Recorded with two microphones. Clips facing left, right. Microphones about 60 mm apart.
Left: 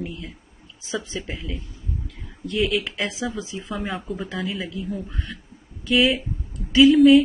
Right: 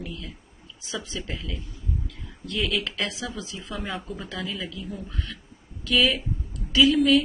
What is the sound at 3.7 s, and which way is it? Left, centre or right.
Speech, centre.